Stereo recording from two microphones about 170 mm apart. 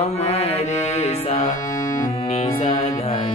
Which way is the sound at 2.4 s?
40° left (ahead or behind).